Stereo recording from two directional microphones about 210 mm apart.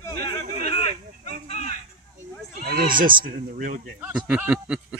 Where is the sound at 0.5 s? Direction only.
30° left (ahead or behind).